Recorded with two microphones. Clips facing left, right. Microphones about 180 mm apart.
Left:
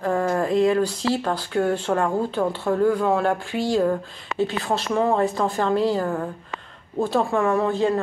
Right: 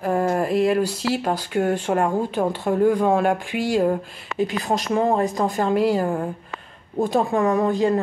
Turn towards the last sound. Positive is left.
turn(degrees=-15)  # may be behind; listen again after turning